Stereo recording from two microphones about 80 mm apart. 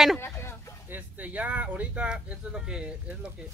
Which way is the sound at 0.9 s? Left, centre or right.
Centre.